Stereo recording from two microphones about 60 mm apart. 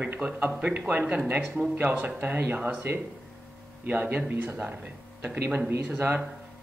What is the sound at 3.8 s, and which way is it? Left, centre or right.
Speech, right.